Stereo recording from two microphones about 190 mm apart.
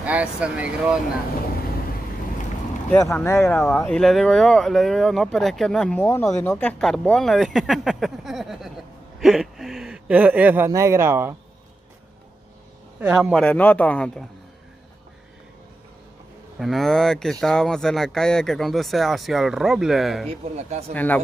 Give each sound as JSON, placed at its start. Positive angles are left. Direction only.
{"t": 0.0, "sound": "speech", "side_deg": -5}
{"t": 2.9, "sound": "speech", "side_deg": 10}
{"t": 3.3, "sound": "speech", "side_deg": 0}
{"t": 6.0, "sound": "speech", "side_deg": 15}
{"t": 6.8, "sound": "speech", "side_deg": 0}
{"t": 13.0, "sound": "speech", "side_deg": -5}
{"t": 13.4, "sound": "speech", "side_deg": 10}
{"t": 16.5, "sound": "speech", "side_deg": 0}
{"t": 20.2, "sound": "speech", "side_deg": -35}
{"t": 20.9, "sound": "speech", "side_deg": 10}